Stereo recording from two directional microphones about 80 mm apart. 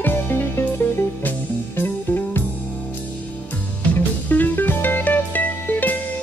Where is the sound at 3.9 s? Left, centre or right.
Left.